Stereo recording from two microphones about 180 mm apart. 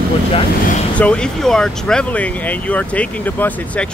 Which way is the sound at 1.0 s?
5° left (ahead or behind).